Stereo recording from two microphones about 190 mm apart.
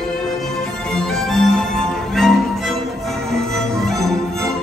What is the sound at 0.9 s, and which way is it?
Music, centre (ahead or behind).